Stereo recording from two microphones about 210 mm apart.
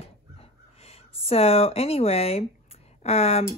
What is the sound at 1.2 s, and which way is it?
Speech, 30° left (ahead or behind).